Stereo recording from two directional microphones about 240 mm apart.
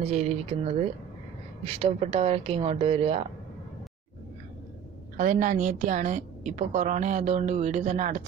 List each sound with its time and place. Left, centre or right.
0.0 s a woman's voice: right
5.1 s a woman's voice: right